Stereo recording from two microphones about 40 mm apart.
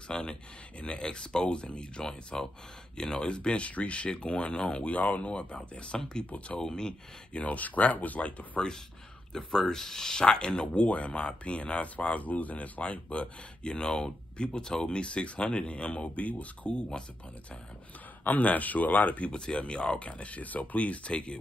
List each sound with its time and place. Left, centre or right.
0.1 s speech: left
5.9 s speech: centre
7.3 s speech: left
9.5 s speech: centre
10.9 s speech: left
18.4 s speech: left
19.3 s speech: left